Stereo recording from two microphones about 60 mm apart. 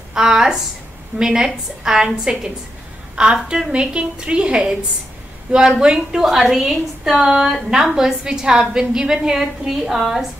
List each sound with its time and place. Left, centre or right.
0.1 s a woman's voice: centre